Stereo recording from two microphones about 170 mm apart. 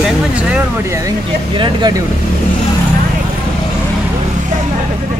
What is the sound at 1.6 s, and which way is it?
Speech, 25° right (ahead or behind).